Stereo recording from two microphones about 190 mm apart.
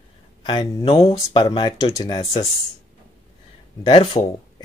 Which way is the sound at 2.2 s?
30° left (ahead or behind).